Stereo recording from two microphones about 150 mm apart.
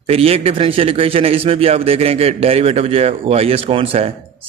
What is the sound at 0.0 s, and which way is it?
A man's voice, 40° right (ahead or behind).